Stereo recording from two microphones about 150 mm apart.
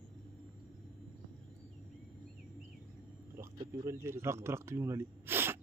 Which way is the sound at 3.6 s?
20° right (ahead or behind).